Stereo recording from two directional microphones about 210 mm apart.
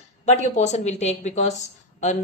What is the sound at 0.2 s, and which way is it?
A woman's voice, 30° left (ahead or behind).